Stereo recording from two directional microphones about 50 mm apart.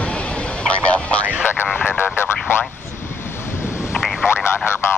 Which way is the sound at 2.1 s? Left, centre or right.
Left.